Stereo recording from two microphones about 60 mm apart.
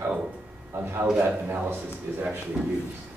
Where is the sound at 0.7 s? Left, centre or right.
Right.